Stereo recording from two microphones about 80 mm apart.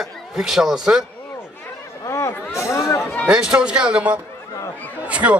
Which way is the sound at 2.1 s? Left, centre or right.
Left.